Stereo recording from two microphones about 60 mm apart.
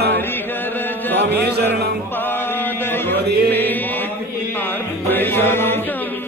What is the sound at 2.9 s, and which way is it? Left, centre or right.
Music, left.